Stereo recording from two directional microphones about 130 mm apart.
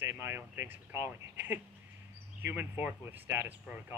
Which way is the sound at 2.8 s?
15° right (ahead or behind).